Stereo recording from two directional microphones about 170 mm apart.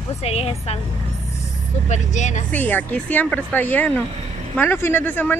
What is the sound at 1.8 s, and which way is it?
Speech, 45° left (ahead or behind).